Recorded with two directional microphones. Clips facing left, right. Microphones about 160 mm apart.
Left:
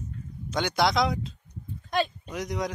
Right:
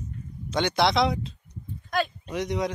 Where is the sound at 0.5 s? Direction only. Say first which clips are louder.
Right 2 dB; centre (ahead or behind).